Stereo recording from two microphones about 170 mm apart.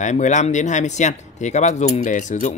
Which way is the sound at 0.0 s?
45° left (ahead or behind).